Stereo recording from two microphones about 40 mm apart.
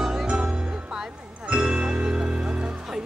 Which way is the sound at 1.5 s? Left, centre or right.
Right.